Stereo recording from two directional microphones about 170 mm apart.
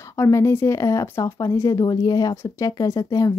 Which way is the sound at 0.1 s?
15° left (ahead or behind).